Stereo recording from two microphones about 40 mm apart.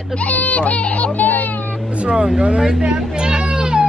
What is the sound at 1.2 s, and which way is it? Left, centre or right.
Speech, left.